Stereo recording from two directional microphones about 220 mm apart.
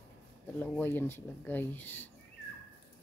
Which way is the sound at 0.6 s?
10° left (ahead or behind).